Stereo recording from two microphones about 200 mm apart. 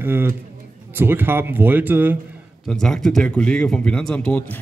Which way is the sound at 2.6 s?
Centre (ahead or behind).